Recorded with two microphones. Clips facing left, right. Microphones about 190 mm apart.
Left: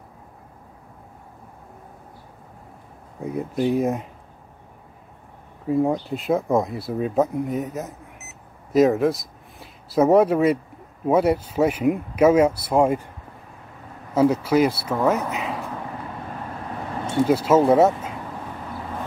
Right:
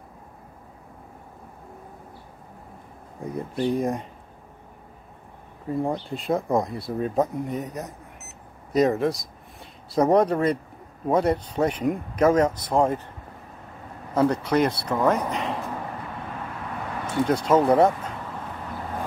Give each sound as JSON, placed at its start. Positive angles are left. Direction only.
{"t": 3.3, "sound": "speech", "side_deg": 5}
{"t": 5.7, "sound": "speech", "side_deg": 5}
{"t": 14.1, "sound": "speech", "side_deg": 5}
{"t": 17.3, "sound": "speech", "side_deg": 5}